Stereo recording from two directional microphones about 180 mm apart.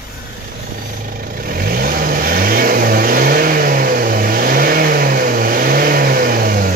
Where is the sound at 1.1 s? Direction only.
55° right (ahead or behind).